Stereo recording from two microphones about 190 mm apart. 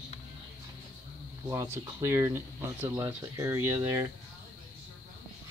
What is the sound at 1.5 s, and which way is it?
Speech, 20° right (ahead or behind).